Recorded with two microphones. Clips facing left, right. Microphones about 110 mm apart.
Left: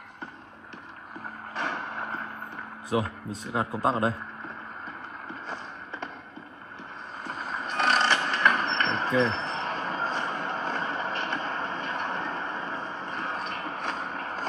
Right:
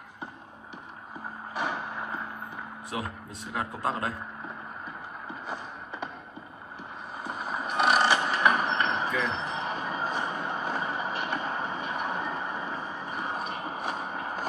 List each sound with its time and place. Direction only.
1.5 s vehicle: 10° right (ahead or behind)
2.9 s a man's voice: 25° left (ahead or behind)
7.2 s mechanisms: 10° right (ahead or behind)
9.2 s vehicle: 10° right (ahead or behind)